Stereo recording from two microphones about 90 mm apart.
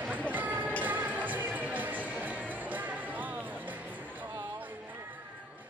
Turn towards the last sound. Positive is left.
turn(degrees=-20)  # may be behind; listen again after turning